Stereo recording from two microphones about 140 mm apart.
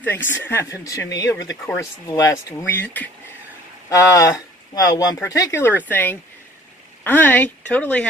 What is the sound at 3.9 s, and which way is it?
Speech, 25° left (ahead or behind).